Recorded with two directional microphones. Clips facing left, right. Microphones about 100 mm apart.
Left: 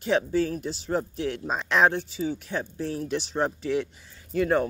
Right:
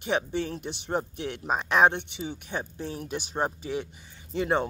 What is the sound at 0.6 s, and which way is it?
Speech, 65° right (ahead or behind).